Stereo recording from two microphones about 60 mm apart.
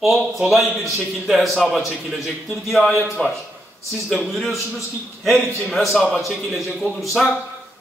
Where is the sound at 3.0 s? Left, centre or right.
Centre.